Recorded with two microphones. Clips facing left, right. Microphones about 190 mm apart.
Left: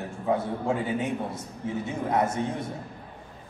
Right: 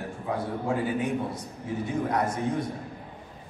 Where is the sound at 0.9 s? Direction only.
25° left (ahead or behind).